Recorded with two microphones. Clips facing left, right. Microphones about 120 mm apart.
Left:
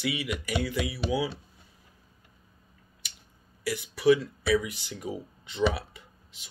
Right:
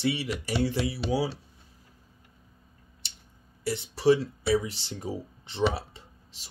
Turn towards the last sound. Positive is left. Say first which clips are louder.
# right 1 dB
turn(degrees=-30)  # may be behind; listen again after turning